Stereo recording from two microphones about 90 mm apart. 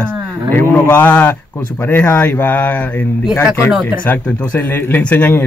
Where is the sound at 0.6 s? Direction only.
25° left (ahead or behind).